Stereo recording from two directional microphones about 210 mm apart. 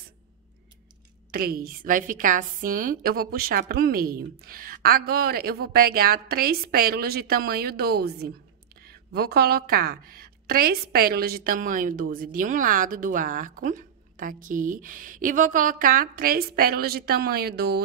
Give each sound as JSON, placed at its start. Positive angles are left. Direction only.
{"t": 1.3, "sound": "a woman's voice", "side_deg": -45}